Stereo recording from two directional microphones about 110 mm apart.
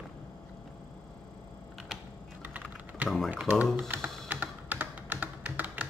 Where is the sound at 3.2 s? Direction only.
15° right (ahead or behind).